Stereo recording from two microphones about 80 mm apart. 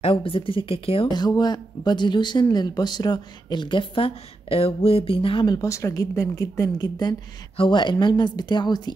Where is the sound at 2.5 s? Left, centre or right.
Left.